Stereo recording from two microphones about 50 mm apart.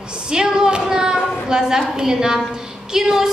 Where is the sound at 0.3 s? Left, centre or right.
Centre.